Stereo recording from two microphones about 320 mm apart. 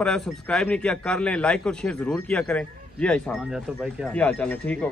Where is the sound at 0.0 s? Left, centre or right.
Centre.